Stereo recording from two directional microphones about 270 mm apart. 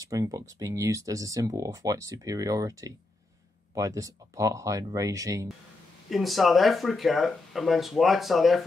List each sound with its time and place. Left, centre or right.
0.0 s speech: centre
6.0 s speech: centre